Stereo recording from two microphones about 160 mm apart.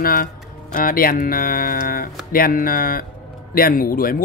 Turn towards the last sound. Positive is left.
turn(degrees=65)  # may be behind; listen again after turning